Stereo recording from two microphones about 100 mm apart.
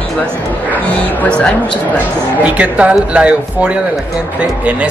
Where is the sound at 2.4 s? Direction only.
10° right (ahead or behind).